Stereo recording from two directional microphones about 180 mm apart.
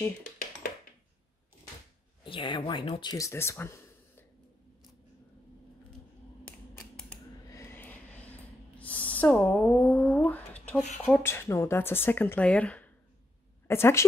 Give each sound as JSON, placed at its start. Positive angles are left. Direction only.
{"t": 2.2, "sound": "speech", "side_deg": 30}
{"t": 7.5, "sound": "a sound", "side_deg": 15}
{"t": 11.2, "sound": "speech", "side_deg": 15}